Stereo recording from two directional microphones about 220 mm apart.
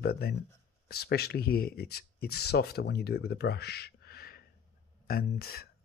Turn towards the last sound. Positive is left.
turn(degrees=45)  # may be behind; listen again after turning